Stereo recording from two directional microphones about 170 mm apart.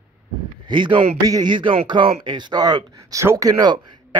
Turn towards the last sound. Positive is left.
turn(degrees=-25)  # may be behind; listen again after turning